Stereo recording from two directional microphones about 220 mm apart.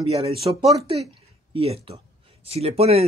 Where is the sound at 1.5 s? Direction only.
25° right (ahead or behind).